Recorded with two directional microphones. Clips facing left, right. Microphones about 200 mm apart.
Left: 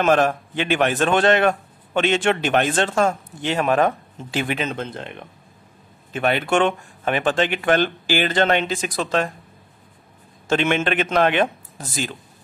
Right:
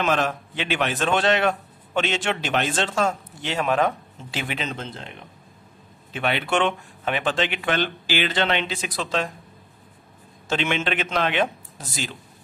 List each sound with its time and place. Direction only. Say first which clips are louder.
0.0 s a man's voice: left 6 dB; 50° left (ahead or behind)
6.1 s a man's voice: left 4 dB; 45° left (ahead or behind)
10.5 s a man's voice: left 5 dB; 50° left (ahead or behind)